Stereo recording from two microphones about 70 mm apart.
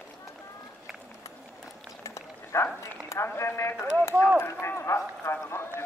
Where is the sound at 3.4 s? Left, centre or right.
Left.